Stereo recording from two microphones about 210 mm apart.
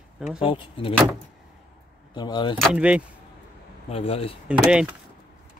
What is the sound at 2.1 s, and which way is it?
Speech, 20° left (ahead or behind).